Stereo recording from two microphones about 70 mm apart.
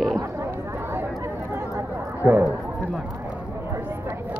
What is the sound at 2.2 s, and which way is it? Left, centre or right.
Speech, right.